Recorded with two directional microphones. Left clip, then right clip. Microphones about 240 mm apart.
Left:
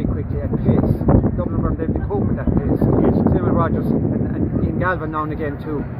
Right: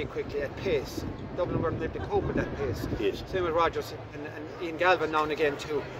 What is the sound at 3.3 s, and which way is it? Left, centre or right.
Speech, centre.